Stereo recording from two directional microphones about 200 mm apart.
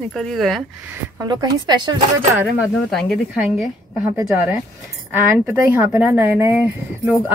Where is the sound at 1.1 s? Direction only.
20° right (ahead or behind).